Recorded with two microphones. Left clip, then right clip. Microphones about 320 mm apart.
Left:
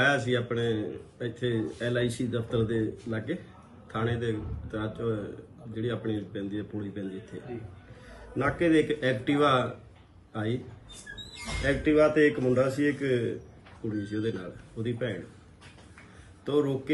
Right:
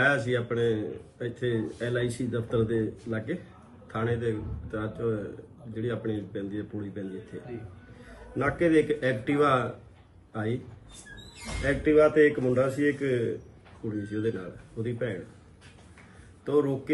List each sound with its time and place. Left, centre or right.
0.0 s a man's voice: centre
16.4 s a man's voice: centre